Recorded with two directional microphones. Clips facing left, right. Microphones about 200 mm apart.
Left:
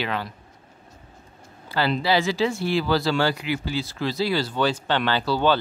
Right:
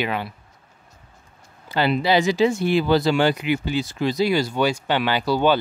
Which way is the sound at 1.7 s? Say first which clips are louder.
Right 3 dB; 20° right (ahead or behind).